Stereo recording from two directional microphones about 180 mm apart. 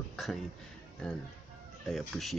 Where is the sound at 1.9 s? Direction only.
Centre (ahead or behind).